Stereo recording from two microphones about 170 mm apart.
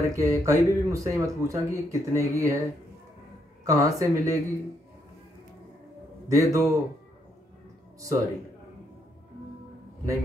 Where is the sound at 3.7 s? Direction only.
20° right (ahead or behind).